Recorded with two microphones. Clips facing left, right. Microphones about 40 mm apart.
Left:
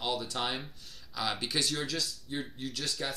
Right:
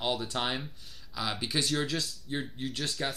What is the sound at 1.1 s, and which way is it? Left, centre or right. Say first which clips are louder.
Speech: even; centre.